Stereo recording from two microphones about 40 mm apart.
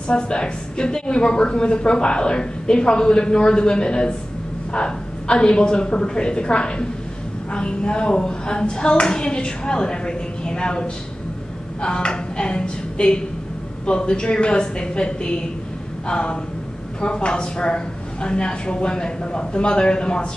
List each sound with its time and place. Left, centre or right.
0.1 s a woman's voice: left